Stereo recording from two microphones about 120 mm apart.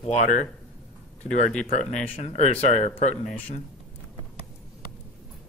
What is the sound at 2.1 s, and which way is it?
Speech, 75° left (ahead or behind).